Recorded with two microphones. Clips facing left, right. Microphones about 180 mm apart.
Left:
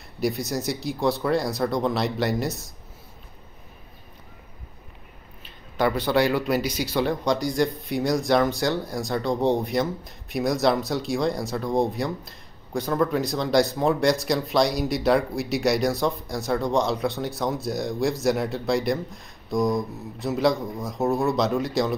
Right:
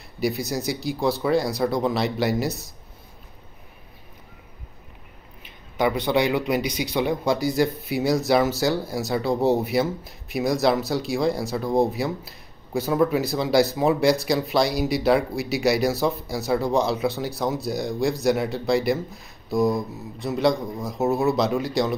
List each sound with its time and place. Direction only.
0.2 s speech: centre (ahead or behind)
5.8 s a man's voice: 15° right (ahead or behind)
7.2 s speech: 5° right (ahead or behind)